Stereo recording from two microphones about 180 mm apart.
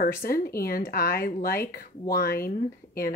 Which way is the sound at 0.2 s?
55° left (ahead or behind).